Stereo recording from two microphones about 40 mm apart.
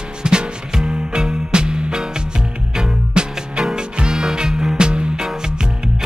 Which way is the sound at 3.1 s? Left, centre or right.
Right.